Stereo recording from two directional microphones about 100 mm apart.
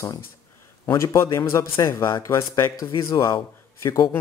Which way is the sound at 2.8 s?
50° left (ahead or behind).